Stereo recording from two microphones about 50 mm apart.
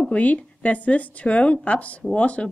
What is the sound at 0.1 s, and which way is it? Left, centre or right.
A woman's voice, left.